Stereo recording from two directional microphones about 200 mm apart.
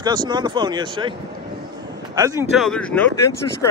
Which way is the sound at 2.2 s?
15° right (ahead or behind).